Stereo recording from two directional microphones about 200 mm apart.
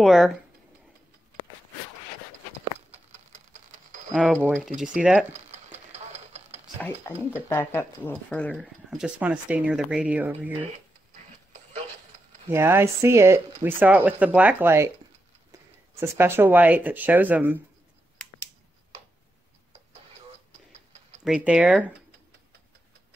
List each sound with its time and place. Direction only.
0.0 s speech: centre (ahead or behind)
4.1 s speech: 5° left (ahead or behind)
4.4 s speech: 10° right (ahead or behind)
5.3 s a sound: 35° right (ahead or behind)
6.8 s speech: 10° left (ahead or behind)
8.5 s speech: 5° right (ahead or behind)
12.4 s speech: 10° right (ahead or behind)
16.0 s speech: 10° right (ahead or behind)
18.1 s finger snapping: 5° left (ahead or behind)
21.2 s speech: 5° right (ahead or behind)